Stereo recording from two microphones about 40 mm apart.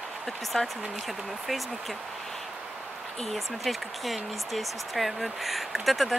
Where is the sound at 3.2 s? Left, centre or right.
Centre.